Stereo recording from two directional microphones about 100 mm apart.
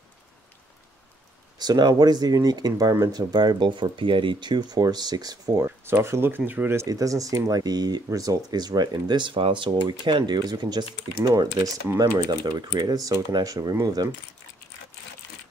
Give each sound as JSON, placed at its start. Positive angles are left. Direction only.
{"t": 1.6, "sound": "speech", "side_deg": -45}
{"t": 5.7, "sound": "speech", "side_deg": -25}
{"t": 6.9, "sound": "speech", "side_deg": -35}